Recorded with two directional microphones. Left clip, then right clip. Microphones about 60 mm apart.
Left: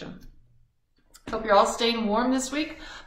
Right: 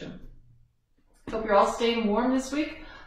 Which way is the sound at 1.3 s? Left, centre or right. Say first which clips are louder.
Left 2 dB; left.